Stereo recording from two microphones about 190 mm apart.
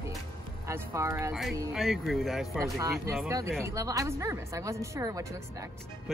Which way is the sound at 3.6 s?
15° right (ahead or behind).